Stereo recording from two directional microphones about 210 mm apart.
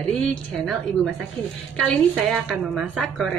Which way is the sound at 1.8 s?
Centre (ahead or behind).